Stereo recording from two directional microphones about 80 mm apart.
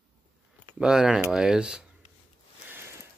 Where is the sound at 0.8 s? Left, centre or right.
Centre.